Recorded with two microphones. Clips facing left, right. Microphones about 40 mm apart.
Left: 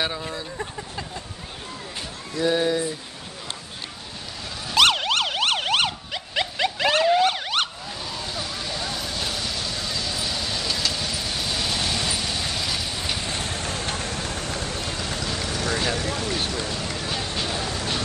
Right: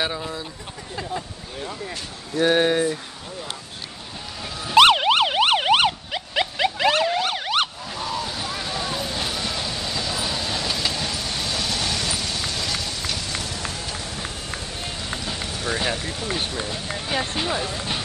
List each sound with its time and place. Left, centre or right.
0.0 s speech: centre
2.3 s speech: right
4.6 s emergency vehicle: centre
13.2 s run: left
15.6 s vehicle: right
16.0 s vehicle: left
16.5 s run: right
17.1 s a sound: right
17.5 s music: right